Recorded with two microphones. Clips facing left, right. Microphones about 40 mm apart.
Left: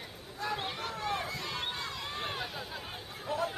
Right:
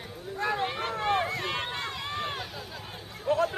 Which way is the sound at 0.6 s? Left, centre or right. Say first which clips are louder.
Right 7 dB; right.